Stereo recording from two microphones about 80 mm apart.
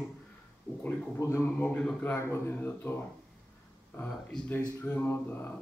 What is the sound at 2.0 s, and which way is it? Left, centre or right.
Speech, left.